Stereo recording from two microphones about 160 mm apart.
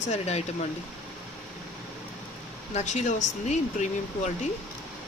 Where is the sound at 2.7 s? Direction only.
45° left (ahead or behind).